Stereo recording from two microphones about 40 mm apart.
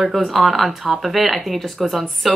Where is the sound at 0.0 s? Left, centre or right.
Centre.